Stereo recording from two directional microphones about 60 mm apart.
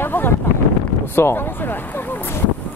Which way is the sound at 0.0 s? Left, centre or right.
Left.